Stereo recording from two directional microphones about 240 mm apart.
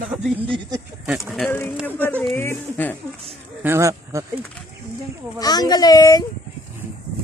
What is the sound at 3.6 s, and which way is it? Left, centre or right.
Speech, centre.